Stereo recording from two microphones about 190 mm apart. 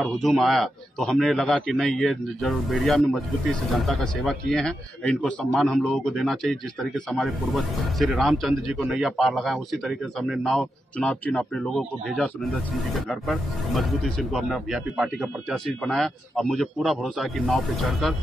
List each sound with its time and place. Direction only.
0.0 s speech: centre (ahead or behind)